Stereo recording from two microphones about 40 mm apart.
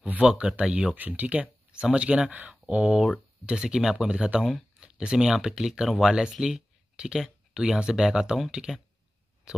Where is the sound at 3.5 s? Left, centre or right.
Centre.